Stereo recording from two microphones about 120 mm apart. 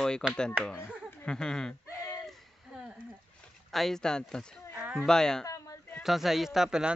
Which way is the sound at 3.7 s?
5° left (ahead or behind).